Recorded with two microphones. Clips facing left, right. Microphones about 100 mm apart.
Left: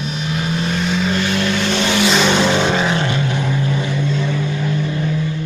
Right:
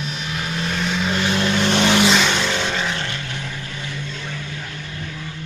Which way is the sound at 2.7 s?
20° left (ahead or behind).